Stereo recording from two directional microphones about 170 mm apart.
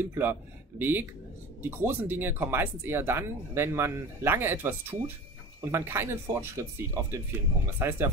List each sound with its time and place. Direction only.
0.1 s speech: 10° right (ahead or behind)